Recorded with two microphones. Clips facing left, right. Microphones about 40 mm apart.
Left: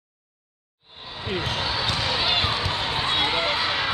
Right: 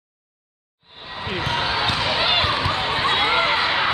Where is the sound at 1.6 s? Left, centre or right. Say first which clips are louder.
Right 4 dB; right.